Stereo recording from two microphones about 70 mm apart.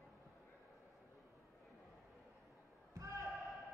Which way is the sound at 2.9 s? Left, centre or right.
Right.